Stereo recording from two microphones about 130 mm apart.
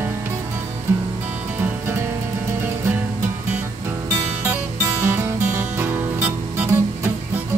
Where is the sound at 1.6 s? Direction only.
20° right (ahead or behind).